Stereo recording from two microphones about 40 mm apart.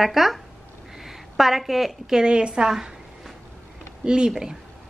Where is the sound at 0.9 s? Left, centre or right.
Centre.